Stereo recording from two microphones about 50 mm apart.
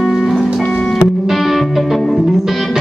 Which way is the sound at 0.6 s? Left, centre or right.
Centre.